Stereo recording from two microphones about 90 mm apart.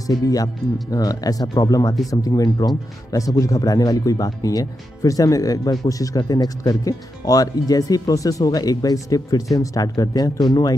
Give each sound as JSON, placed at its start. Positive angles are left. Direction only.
{"t": 0.0, "sound": "speech", "side_deg": 45}